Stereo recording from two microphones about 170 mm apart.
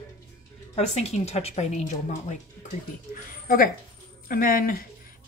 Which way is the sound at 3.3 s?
55° left (ahead or behind).